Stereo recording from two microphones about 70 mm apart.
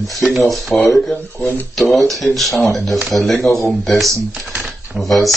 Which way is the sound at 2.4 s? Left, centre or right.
Centre.